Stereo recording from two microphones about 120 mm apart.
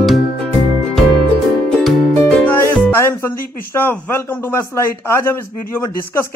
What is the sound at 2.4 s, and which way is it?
Speech, 20° left (ahead or behind).